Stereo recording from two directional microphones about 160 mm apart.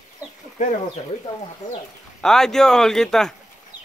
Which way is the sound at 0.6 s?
50° left (ahead or behind).